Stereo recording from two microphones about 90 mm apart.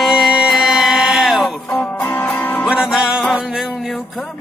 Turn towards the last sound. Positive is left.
turn(degrees=-10)  # may be behind; listen again after turning